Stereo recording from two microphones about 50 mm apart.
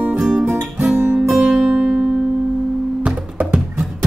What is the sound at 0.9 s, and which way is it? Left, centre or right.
Music, right.